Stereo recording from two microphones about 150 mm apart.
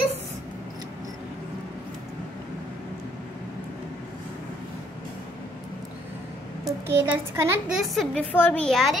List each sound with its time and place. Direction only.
6.9 s a child's voice: 15° right (ahead or behind)
7.8 s a woman's voice: centre (ahead or behind)